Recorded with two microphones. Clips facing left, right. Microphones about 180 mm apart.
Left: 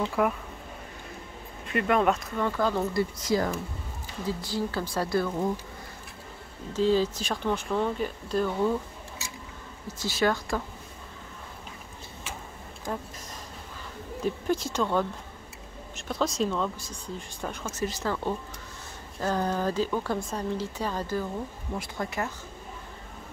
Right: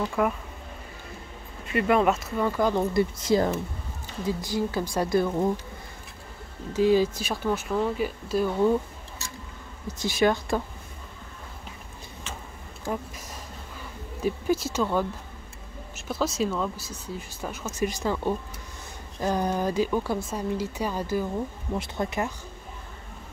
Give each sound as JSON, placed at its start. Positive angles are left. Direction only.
{"t": 0.2, "sound": "speech", "side_deg": 0}
{"t": 1.7, "sound": "a woman's voice", "side_deg": -5}
{"t": 4.4, "sound": "a woman's voice", "side_deg": -15}
{"t": 6.7, "sound": "a woman's voice", "side_deg": -10}
{"t": 10.0, "sound": "a woman's voice", "side_deg": -20}
{"t": 12.9, "sound": "a woman's voice", "side_deg": -15}
{"t": 14.2, "sound": "a woman's voice", "side_deg": -5}
{"t": 21.7, "sound": "a woman's voice", "side_deg": -25}